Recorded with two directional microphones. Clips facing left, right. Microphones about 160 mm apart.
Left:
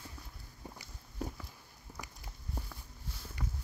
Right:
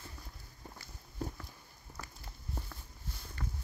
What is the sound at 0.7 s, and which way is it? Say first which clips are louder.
Walk: left 2 dB; 5° left (ahead or behind).